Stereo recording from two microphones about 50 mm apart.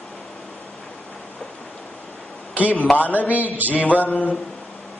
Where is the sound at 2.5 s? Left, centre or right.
Right.